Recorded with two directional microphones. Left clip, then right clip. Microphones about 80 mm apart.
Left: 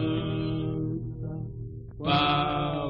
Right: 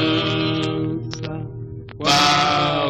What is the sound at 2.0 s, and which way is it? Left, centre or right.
Music, right.